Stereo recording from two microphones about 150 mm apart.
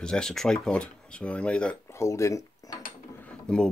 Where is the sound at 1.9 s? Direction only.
20° left (ahead or behind).